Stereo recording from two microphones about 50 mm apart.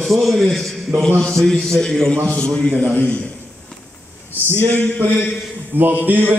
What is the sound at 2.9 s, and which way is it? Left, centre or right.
Speech, left.